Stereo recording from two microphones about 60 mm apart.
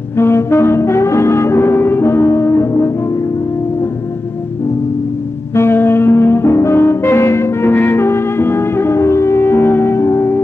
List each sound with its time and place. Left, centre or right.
0.2 s music: left
5.5 s music: left
7.7 s music: left